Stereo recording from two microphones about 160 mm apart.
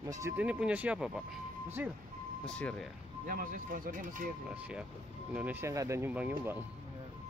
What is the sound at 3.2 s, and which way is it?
Speech, 60° right (ahead or behind).